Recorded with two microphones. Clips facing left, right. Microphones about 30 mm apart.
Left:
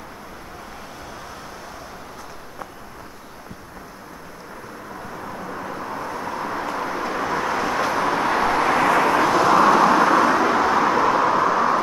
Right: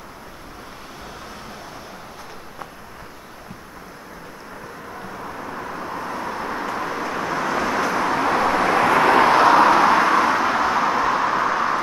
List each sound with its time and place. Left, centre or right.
5.1 s vehicle: centre
8.7 s vehicle: right
9.0 s vehicle: right
9.7 s vehicle: centre